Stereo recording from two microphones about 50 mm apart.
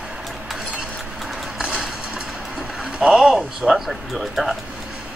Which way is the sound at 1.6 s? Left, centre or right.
Centre.